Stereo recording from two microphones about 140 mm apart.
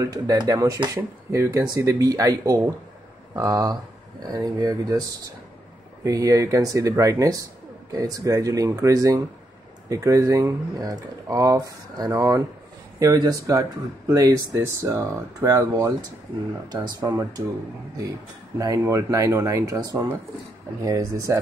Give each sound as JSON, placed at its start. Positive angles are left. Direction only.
{"t": 0.0, "sound": "speech", "side_deg": -25}
{"t": 18.6, "sound": "speech", "side_deg": -25}